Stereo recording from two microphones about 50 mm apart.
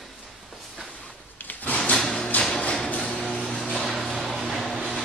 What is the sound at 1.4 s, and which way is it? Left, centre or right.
Drawer open or close, left.